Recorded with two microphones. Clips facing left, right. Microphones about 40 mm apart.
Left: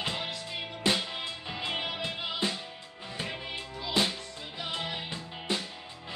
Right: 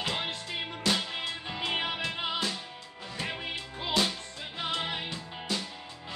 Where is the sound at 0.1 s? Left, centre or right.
Right.